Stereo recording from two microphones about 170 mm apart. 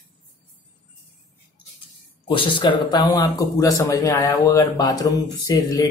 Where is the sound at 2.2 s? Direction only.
30° left (ahead or behind).